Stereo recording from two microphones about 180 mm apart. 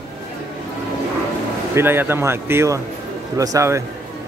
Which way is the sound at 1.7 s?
10° right (ahead or behind).